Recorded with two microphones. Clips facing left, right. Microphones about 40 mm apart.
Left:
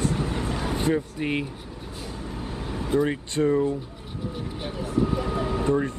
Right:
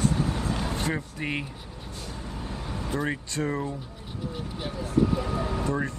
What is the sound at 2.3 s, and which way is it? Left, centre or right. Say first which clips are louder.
Vehicle: left 3 dB; left.